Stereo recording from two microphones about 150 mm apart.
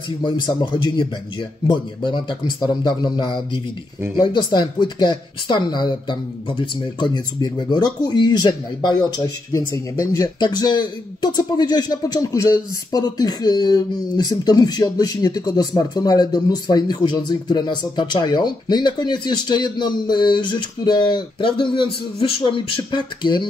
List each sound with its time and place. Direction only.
0.2 s speech: 30° left (ahead or behind)